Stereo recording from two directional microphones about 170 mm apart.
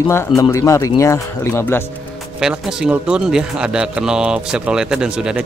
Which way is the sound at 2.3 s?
5° right (ahead or behind).